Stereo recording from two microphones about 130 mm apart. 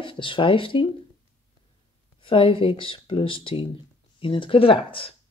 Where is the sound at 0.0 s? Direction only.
40° left (ahead or behind).